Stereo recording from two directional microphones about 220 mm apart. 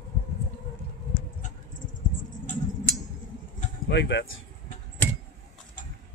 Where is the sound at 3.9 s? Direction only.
55° left (ahead or behind).